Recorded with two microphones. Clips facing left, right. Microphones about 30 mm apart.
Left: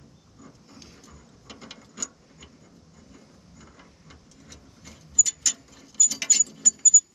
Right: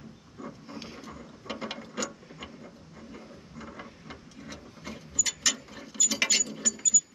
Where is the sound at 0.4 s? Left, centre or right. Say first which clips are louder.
Right 8 dB; right.